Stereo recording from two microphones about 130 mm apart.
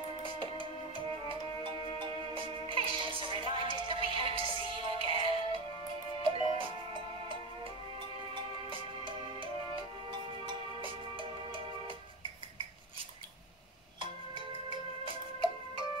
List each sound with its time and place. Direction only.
0.2 s music: 40° right (ahead or behind)
8.4 s music: 40° right (ahead or behind)
14.7 s music: 40° right (ahead or behind)